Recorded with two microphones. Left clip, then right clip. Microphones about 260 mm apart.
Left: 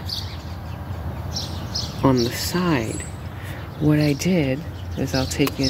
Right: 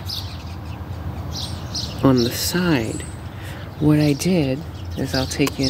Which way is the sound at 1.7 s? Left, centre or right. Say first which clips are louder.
Right 2 dB; centre.